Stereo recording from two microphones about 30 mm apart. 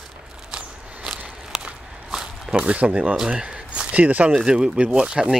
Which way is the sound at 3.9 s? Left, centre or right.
Right.